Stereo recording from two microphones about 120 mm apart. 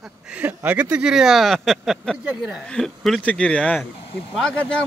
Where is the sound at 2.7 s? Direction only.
5° left (ahead or behind).